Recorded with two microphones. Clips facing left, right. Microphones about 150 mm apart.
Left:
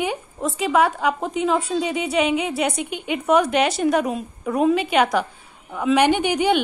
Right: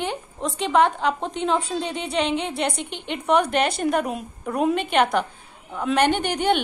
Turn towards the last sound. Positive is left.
turn(degrees=10)  # may be behind; listen again after turning